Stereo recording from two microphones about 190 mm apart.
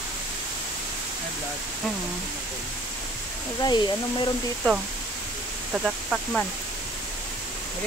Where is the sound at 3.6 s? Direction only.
25° left (ahead or behind).